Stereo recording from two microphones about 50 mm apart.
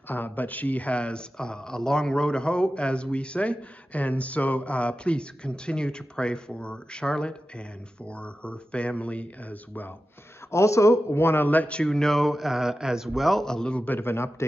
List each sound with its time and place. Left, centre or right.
0.1 s speech: left
10.5 s speech: left
11.1 s a man's voice: left
11.4 s a man's voice: left
11.7 s speech: centre
13.5 s a man's voice: centre
13.8 s a man's voice: left